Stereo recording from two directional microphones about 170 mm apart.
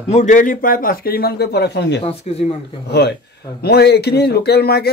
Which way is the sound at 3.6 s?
70° left (ahead or behind).